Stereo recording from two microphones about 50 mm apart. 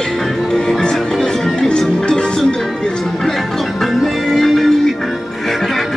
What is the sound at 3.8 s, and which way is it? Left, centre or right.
Music, centre.